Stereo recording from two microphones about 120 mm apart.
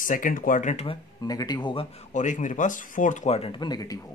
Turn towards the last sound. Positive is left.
turn(degrees=30)  # may be behind; listen again after turning